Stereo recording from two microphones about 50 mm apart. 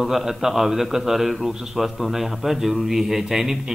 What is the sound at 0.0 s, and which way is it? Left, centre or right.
A man's voice, centre.